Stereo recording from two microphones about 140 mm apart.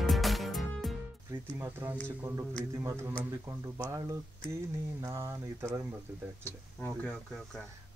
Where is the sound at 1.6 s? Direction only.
15° right (ahead or behind).